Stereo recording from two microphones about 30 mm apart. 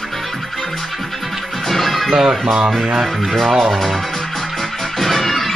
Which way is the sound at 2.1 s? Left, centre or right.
Centre.